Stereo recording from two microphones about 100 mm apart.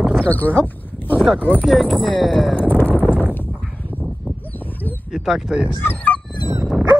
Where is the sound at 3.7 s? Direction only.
20° left (ahead or behind).